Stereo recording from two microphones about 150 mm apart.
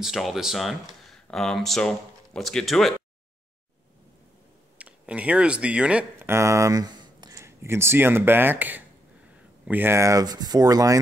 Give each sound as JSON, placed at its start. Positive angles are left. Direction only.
{"t": 0.0, "sound": "speech", "side_deg": 0}
{"t": 4.7, "sound": "speech", "side_deg": -10}